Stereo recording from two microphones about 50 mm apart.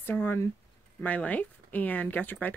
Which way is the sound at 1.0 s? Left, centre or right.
Left.